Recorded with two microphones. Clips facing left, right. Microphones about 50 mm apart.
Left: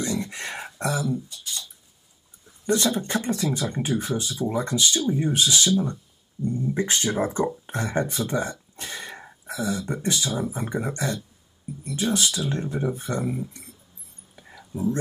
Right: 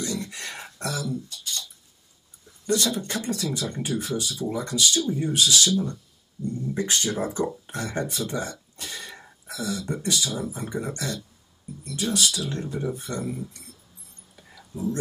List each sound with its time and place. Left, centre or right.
0.0 s a sound: left
2.6 s speech: left
14.7 s speech: left